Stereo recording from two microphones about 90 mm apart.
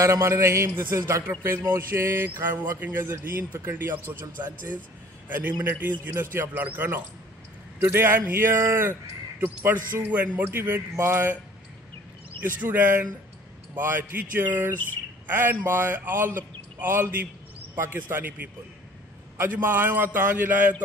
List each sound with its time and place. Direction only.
0.0 s a man's voice: 35° right (ahead or behind)
5.6 s speech: 25° right (ahead or behind)
12.4 s speech: 20° right (ahead or behind)
19.3 s speech: 25° right (ahead or behind)